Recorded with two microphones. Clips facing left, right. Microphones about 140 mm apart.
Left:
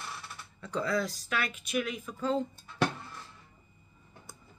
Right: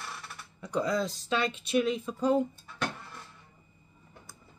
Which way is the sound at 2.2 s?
15° right (ahead or behind).